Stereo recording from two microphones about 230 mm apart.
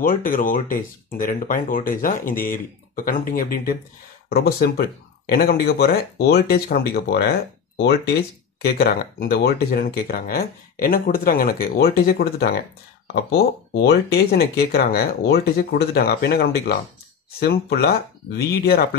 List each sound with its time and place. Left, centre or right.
0.0 s speech: left
13.8 s speech: left